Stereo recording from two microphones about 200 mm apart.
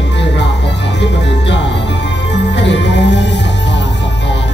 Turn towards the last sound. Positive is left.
turn(degrees=60)  # may be behind; listen again after turning